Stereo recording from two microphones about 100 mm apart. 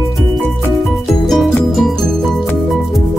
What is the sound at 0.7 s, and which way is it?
Music, centre (ahead or behind).